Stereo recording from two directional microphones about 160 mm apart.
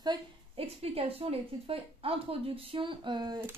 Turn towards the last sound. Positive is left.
turn(degrees=-30)  # may be behind; listen again after turning